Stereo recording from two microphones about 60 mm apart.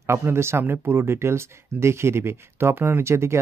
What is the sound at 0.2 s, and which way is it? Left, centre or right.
Speech, right.